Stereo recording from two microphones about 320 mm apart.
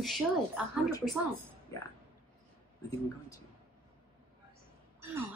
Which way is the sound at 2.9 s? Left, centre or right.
Centre.